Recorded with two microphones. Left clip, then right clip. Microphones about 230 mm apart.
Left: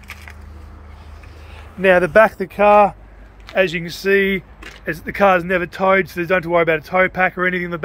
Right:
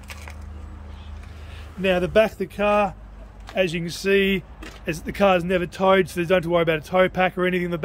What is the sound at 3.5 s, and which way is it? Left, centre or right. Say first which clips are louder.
Speech: left 6 dB; centre.